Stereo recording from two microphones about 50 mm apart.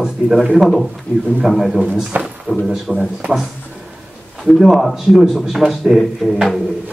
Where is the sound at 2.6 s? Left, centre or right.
Centre.